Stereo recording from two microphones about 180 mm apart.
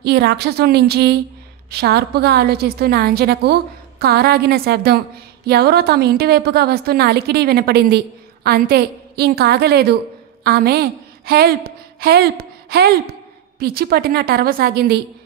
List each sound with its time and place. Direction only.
0.0 s a woman's voice: 65° right (ahead or behind)